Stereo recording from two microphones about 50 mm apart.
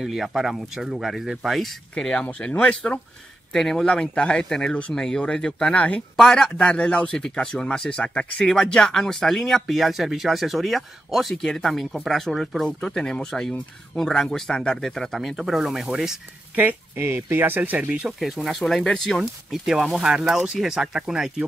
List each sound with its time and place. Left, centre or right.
0.0 s speech: centre
1.0 s speech: centre
2.3 s speech: left
3.5 s speech: centre
3.8 s speech: centre
6.1 s speech: centre
6.5 s speech: left
8.4 s speech: centre
16.9 s speech: right
17.6 s speech: right
18.0 s speech: centre
19.1 s speech: centre